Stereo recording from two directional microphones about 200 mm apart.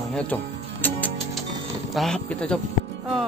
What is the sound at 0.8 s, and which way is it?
Music, 10° left (ahead or behind).